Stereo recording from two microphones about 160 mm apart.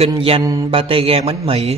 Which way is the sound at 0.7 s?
35° right (ahead or behind).